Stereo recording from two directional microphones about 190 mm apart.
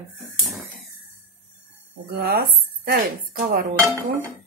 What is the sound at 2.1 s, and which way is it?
Speech, 55° right (ahead or behind).